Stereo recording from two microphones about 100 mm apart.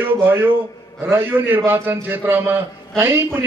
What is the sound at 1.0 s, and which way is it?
A man's voice, 20° right (ahead or behind).